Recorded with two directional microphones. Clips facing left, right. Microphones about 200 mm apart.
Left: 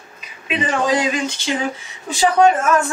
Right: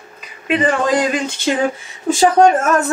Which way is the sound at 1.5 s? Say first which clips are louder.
Right 6 dB; 55° right (ahead or behind).